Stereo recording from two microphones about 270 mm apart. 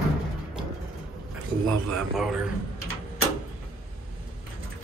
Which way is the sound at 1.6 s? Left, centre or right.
Centre.